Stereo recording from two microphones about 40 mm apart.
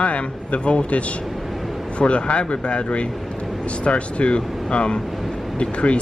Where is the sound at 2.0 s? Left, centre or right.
Left.